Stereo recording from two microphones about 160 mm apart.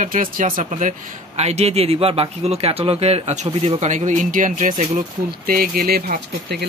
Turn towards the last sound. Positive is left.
turn(degrees=-80)